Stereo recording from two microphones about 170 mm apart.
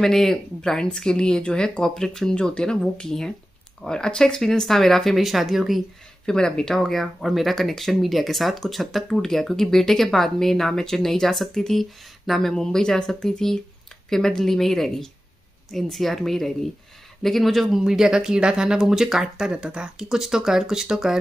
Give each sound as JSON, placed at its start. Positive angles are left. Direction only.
{"t": 0.0, "sound": "speech", "side_deg": 0}